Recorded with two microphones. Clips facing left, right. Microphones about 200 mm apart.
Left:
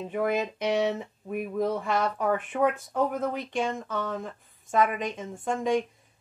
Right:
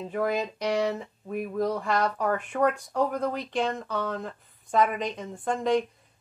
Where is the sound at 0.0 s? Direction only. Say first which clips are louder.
Even; 5° left (ahead or behind).